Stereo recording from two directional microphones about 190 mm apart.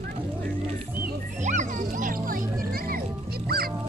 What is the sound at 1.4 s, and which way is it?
Music, 40° right (ahead or behind).